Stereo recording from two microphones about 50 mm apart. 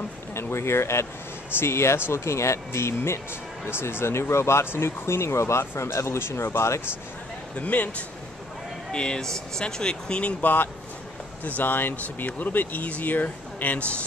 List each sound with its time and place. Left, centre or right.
0.3 s speech: left
7.5 s speech: left
8.9 s speech: centre
10.4 s speech: left